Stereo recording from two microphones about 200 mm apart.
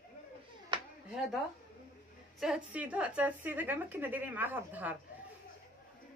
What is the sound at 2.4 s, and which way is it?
Speech, 5° right (ahead or behind).